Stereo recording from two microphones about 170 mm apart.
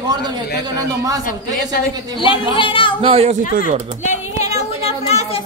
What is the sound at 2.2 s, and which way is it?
Speech, 30° left (ahead or behind).